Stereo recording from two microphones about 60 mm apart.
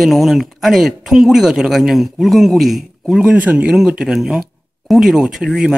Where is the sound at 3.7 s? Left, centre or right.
Centre.